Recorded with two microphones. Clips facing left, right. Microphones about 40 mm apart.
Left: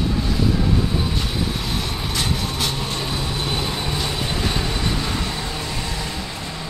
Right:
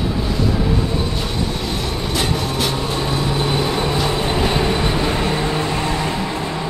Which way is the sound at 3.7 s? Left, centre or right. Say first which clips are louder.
Right 6 dB; right.